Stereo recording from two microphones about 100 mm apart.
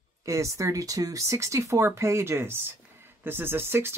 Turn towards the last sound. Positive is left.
turn(degrees=-25)  # may be behind; listen again after turning